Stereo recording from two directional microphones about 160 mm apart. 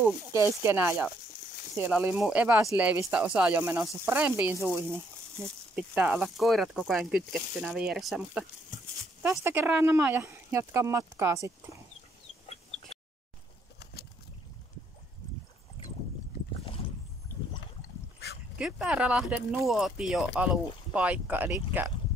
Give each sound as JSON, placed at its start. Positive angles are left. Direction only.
{"t": 0.0, "sound": "speech", "side_deg": -15}
{"t": 5.8, "sound": "speech", "side_deg": -5}
{"t": 16.5, "sound": "mechanisms", "side_deg": 35}
{"t": 18.6, "sound": "speech", "side_deg": -5}